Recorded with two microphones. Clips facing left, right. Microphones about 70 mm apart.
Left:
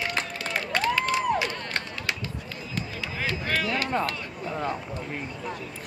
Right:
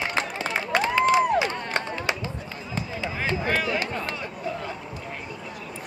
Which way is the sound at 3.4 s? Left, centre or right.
Centre.